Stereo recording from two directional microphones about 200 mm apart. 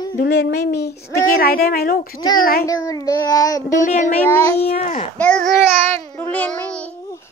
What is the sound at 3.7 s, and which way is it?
Child singing, 40° left (ahead or behind).